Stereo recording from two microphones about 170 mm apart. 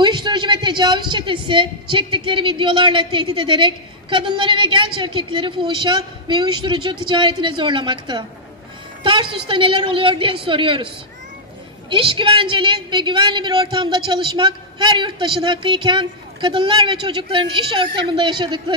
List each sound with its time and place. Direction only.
0.0 s a woman's voice: 25° right (ahead or behind)
9.0 s a sound: 30° right (ahead or behind)
9.5 s a woman's voice: 30° right (ahead or behind)
11.9 s a woman's voice: 30° right (ahead or behind)